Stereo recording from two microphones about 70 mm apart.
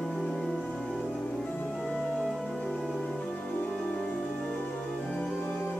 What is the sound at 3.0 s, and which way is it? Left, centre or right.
Music, centre.